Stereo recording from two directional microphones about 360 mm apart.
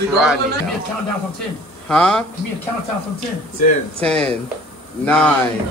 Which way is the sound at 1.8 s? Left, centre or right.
Centre.